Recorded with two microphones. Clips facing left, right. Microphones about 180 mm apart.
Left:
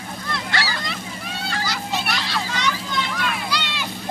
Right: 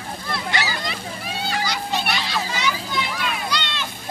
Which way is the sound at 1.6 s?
Centre (ahead or behind).